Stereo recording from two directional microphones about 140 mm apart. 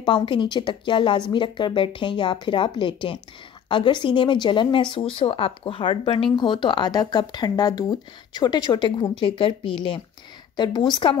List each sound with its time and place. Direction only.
0.0 s a woman's voice: 35° left (ahead or behind)